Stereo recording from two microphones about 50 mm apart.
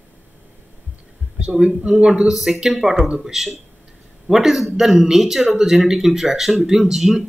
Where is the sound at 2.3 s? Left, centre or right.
Centre.